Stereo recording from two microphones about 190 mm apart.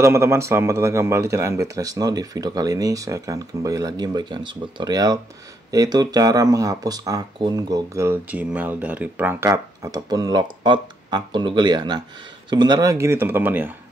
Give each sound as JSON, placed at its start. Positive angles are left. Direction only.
{"t": 0.0, "sound": "speech", "side_deg": -15}